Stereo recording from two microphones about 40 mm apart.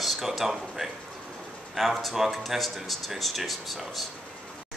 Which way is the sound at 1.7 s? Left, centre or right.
Centre.